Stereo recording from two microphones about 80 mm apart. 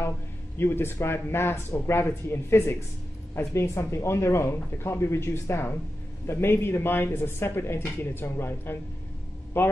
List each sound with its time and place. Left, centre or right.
0.6 s a man's voice: left